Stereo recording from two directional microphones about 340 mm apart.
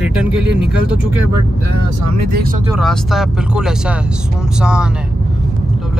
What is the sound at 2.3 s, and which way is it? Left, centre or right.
Speech, right.